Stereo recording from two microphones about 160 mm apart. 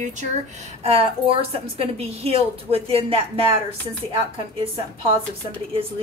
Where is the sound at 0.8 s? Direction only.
40° right (ahead or behind).